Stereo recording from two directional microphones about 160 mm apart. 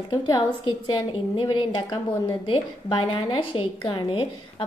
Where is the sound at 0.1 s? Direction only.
25° left (ahead or behind).